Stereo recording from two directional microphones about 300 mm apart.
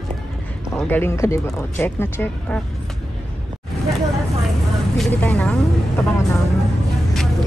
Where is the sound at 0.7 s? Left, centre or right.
Centre.